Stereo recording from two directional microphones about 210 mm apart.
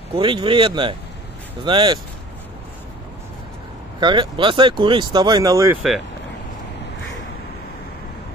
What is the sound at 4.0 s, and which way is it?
Speech, 20° right (ahead or behind).